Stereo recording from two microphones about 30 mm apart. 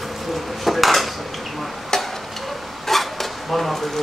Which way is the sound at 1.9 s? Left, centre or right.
Centre.